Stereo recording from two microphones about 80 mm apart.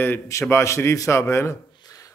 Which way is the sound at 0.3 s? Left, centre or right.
Left.